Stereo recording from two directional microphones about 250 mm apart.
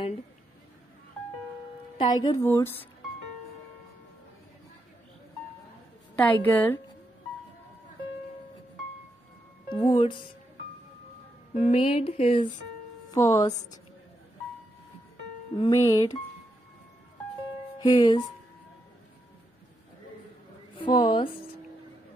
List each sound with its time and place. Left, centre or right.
2.0 s a woman's voice: centre
6.1 s a woman's voice: centre
9.7 s a woman's voice: centre
11.5 s a sound: left
13.1 s a woman's voice: centre
15.5 s a woman's voice: centre
17.7 s music: centre
20.7 s a woman's voice: centre